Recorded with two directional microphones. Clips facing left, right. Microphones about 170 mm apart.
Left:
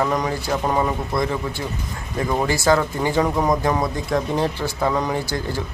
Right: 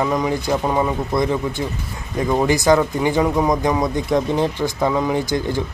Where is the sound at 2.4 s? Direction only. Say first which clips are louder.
Right 3 dB; 20° right (ahead or behind).